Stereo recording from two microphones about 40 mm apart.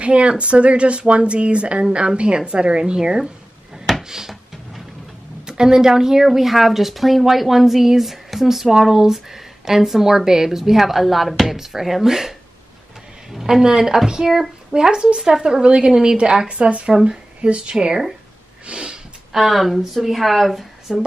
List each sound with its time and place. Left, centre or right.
0.0 s speech: right; by 4.4 s centre
5.5 s speech: centre
18.7 s snort: right
19.3 s speech: centre